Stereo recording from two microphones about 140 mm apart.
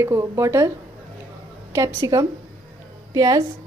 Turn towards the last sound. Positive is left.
turn(degrees=-25)  # may be behind; listen again after turning